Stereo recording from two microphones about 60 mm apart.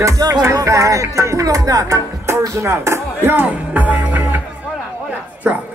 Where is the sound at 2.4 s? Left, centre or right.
Right.